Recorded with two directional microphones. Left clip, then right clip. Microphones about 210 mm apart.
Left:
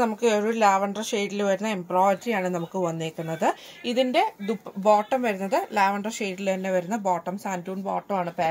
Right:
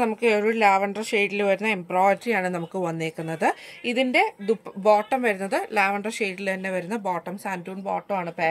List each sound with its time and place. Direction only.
0.0 s speech: 20° right (ahead or behind)